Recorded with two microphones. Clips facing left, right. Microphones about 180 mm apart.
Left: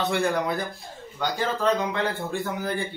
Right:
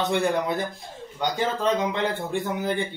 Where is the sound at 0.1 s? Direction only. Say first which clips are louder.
Right 1 dB; 20° right (ahead or behind).